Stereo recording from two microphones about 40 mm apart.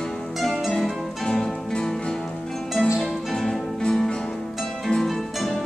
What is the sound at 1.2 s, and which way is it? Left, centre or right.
Music, centre.